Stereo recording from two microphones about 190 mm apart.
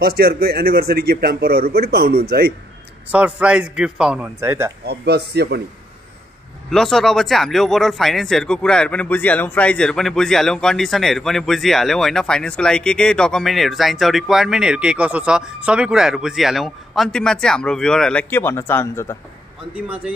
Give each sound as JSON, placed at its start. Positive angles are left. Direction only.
{"t": 0.0, "sound": "a man's voice", "side_deg": -55}
{"t": 3.1, "sound": "a man's voice", "side_deg": -5}
{"t": 4.8, "sound": "a man's voice", "side_deg": -60}
{"t": 6.7, "sound": "speech", "side_deg": 0}